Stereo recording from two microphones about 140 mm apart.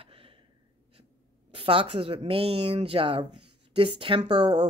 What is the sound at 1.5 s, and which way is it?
Speech, 40° right (ahead or behind).